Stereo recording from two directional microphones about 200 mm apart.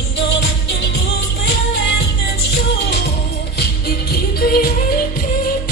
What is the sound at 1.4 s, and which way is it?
Music, 60° left (ahead or behind).